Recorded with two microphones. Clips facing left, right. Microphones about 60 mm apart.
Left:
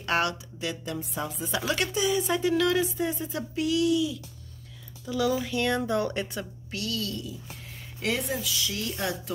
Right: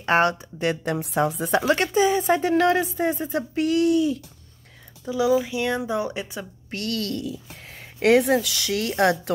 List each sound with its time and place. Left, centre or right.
0.0 s speech: right
0.6 s speech: right
1.6 s speech: right
5.0 s speech: centre
6.7 s speech: right